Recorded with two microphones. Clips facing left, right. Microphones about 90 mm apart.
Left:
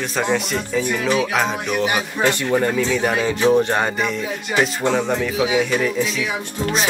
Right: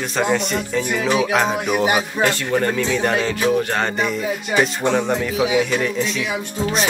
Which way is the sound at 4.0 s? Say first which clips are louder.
Right 1 dB; 5° right (ahead or behind).